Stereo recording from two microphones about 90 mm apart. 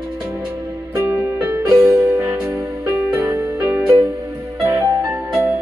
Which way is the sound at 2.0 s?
35° right (ahead or behind).